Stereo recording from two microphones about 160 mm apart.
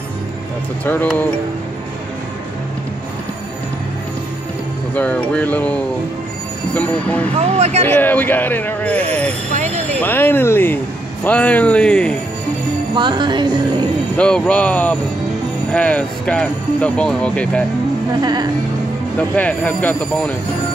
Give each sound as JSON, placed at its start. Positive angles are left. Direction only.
{"t": 4.9, "sound": "speech", "side_deg": 10}
{"t": 7.3, "sound": "speech", "side_deg": -45}
{"t": 7.9, "sound": "speech", "side_deg": 10}
{"t": 9.5, "sound": "a sound", "side_deg": -45}
{"t": 9.9, "sound": "speech", "side_deg": 10}
{"t": 12.9, "sound": "music", "side_deg": -30}
{"t": 14.1, "sound": "speech", "side_deg": 5}
{"t": 18.2, "sound": "music", "side_deg": -25}
{"t": 19.1, "sound": "speech", "side_deg": 10}